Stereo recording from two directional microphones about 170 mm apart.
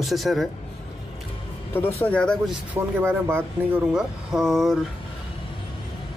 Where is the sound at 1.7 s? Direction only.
10° left (ahead or behind).